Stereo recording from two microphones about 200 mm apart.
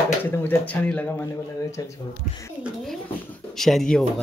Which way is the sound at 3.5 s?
Centre (ahead or behind).